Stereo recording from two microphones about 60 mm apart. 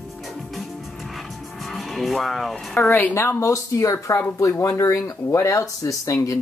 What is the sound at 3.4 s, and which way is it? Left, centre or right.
Speech, left.